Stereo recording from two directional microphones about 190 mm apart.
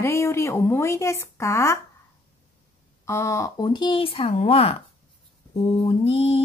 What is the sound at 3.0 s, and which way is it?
Speech, 15° left (ahead or behind).